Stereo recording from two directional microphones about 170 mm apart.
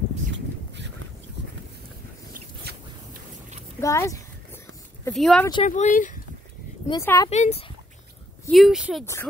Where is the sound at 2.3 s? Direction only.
55° right (ahead or behind).